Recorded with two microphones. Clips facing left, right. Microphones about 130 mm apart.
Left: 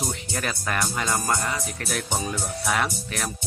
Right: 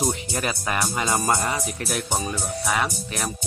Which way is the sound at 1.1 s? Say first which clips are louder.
Right 4 dB; 20° right (ahead or behind).